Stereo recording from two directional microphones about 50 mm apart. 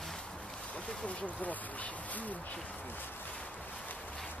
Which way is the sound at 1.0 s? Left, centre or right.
Left.